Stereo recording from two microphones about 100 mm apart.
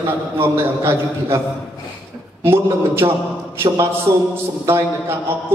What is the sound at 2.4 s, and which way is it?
Speech, 25° right (ahead or behind).